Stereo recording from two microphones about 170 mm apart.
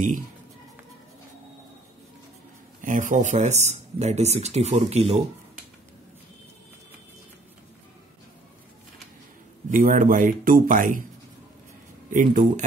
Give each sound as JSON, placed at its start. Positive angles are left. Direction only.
{"t": 2.8, "sound": "speech", "side_deg": -50}
{"t": 9.7, "sound": "speech", "side_deg": -50}
{"t": 12.1, "sound": "speech", "side_deg": -50}